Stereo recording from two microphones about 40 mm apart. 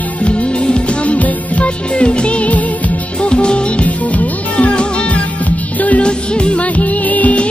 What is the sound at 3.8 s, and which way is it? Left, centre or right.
Music, left.